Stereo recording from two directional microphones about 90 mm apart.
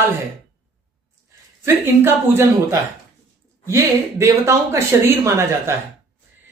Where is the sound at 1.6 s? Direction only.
30° right (ahead or behind).